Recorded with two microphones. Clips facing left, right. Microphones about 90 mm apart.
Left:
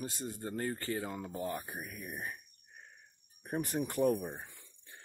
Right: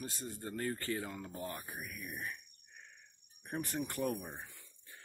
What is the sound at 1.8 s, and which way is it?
Speech, 35° left (ahead or behind).